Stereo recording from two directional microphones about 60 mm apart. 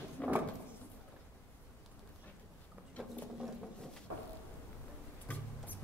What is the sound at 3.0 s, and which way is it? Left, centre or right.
Patter, centre.